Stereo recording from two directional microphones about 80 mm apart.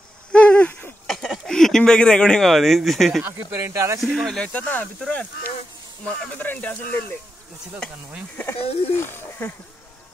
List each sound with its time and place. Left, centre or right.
0.3 s hoot: centre
1.0 s speech: centre
3.3 s speech: right
4.0 s speech: centre
4.5 s speech: centre
8.5 s speech: left